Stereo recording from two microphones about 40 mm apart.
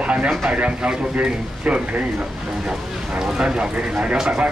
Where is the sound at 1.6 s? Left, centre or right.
Right.